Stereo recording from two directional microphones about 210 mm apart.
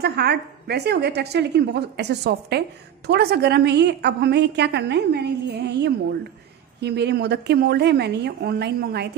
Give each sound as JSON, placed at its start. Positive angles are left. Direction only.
{"t": 0.0, "sound": "a woman's voice", "side_deg": -50}